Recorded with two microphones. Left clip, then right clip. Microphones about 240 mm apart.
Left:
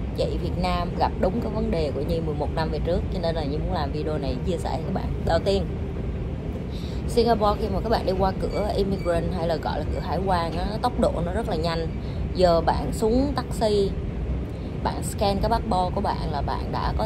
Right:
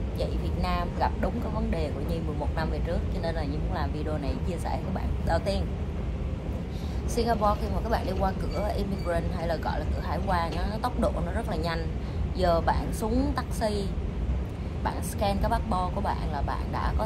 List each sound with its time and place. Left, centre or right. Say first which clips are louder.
0.2 s speech: left 7 dB; centre
7.2 s speech: left 5 dB; centre